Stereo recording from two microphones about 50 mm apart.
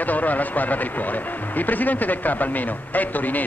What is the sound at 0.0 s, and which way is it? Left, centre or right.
A man's voice, left.